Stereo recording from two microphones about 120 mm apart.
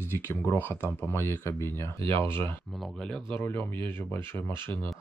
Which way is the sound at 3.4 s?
15° left (ahead or behind).